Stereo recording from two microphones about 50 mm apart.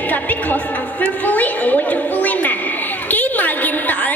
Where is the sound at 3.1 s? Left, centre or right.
Left.